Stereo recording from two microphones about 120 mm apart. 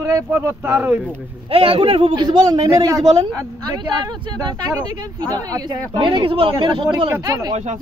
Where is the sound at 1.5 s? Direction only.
50° right (ahead or behind); by 3.2 s 30° right (ahead or behind).